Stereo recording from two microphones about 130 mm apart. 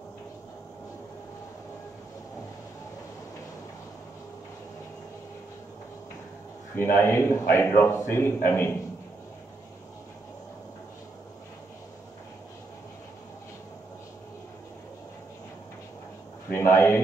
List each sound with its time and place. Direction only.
6.8 s a man's voice: 15° left (ahead or behind)
16.4 s a man's voice: 20° left (ahead or behind)